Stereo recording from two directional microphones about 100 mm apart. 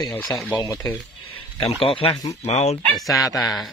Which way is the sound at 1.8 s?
70° left (ahead or behind).